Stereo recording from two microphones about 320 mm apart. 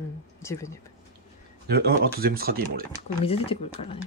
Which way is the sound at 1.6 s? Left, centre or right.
Right.